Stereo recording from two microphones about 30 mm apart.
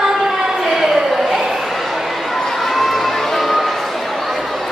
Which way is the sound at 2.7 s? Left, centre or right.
Centre.